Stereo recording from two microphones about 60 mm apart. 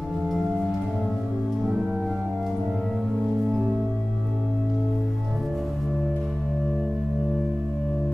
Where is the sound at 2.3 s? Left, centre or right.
Centre.